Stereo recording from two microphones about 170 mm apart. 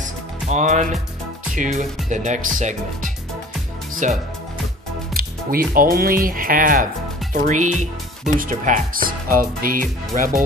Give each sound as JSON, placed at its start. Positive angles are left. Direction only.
{"t": 0.0, "sound": "music", "side_deg": -45}
{"t": 1.5, "sound": "speech", "side_deg": -45}
{"t": 5.1, "sound": "speech", "side_deg": -60}